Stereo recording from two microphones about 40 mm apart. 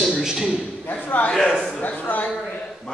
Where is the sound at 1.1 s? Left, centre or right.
Left.